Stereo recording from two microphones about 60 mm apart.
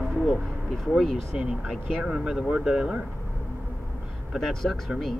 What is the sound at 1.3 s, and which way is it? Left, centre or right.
Speech, centre.